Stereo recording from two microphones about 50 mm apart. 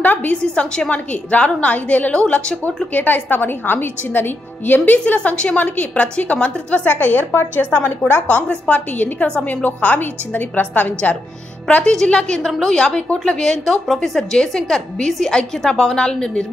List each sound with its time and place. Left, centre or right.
0.0 s a sound: left
0.4 s a woman's voice: centre
2.9 s a woman's voice: left
8.0 s a woman's voice: left
8.9 s a woman's voice: left
11.8 s a woman's voice: centre